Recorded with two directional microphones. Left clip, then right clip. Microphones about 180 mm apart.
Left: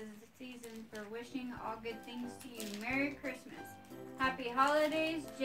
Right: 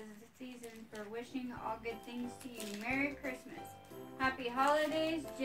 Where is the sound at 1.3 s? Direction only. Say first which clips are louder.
Left 1 dB; 20° right (ahead or behind).